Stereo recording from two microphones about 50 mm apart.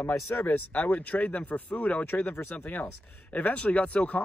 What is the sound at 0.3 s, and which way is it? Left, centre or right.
Speech, left.